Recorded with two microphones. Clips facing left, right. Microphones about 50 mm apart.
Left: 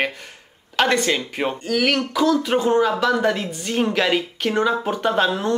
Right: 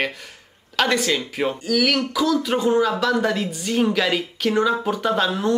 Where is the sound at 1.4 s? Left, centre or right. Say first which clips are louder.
Even; centre.